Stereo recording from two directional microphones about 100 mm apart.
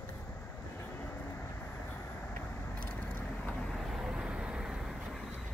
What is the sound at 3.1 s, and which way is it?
Vehicle, 20° left (ahead or behind).